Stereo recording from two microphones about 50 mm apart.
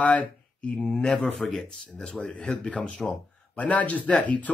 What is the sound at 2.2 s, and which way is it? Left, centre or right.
Speech, centre.